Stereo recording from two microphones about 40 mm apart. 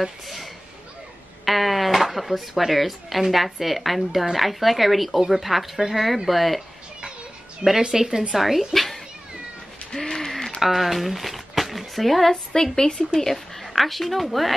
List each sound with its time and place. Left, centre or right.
1.4 s speech: centre
7.8 s speech: centre
9.9 s a sound: centre
10.6 s speech: centre
12.7 s speech: centre
13.2 s speech: centre